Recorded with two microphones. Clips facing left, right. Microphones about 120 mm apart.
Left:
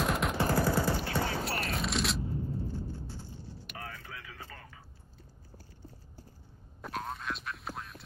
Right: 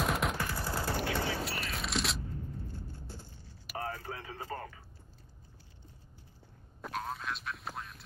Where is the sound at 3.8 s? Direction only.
35° right (ahead or behind).